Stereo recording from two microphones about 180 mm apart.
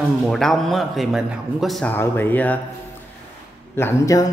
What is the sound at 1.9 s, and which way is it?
Speech, 10° left (ahead or behind).